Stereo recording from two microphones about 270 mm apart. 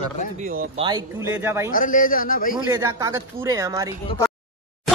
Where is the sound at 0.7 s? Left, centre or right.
Centre.